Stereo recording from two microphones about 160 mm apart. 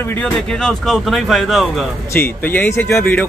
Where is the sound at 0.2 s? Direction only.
5° left (ahead or behind).